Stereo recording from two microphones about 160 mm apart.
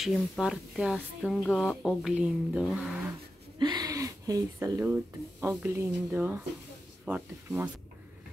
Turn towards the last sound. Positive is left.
turn(degrees=-10)  # may be behind; listen again after turning